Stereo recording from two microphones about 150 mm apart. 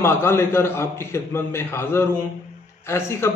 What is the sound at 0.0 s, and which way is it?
A man's voice, 15° left (ahead or behind).